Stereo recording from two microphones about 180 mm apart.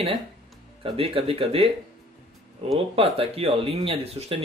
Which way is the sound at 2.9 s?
30° right (ahead or behind).